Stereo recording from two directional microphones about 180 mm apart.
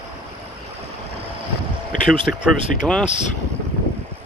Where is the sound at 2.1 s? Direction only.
30° right (ahead or behind).